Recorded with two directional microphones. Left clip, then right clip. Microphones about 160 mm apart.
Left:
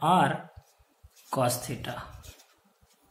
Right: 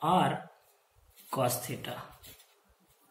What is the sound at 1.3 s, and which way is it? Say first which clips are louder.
Speech: left 3 dB; 40° left (ahead or behind).